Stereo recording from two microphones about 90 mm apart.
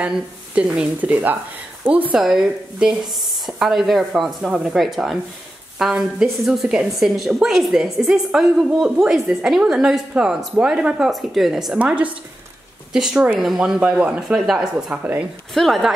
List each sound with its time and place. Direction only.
1.0 s a woman's voice: 20° right (ahead or behind)
2.1 s a woman's voice: 5° right (ahead or behind)
11.8 s a woman's voice: 15° right (ahead or behind)
14.2 s speech: centre (ahead or behind)
14.9 s a woman's voice: 15° right (ahead or behind)
15.5 s speech: centre (ahead or behind)